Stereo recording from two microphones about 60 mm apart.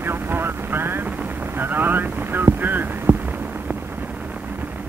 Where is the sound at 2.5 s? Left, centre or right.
Right.